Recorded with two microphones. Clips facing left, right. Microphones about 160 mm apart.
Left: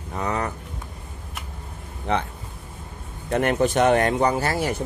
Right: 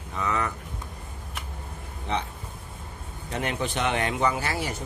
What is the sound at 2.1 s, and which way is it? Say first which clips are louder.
Speech: left 5 dB; 55° left (ahead or behind).